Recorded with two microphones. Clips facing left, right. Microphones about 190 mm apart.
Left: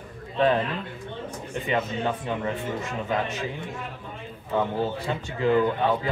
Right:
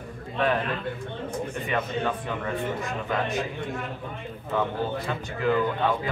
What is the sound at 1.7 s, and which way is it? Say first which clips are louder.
Speech: left 2 dB; 20° left (ahead or behind).